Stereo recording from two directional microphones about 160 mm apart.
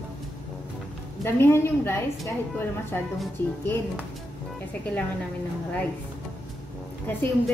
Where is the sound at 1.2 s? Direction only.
15° left (ahead or behind).